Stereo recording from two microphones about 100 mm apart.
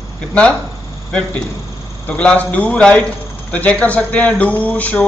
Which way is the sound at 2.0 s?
15° left (ahead or behind).